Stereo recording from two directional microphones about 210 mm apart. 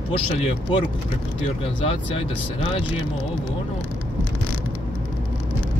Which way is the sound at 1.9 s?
25° left (ahead or behind).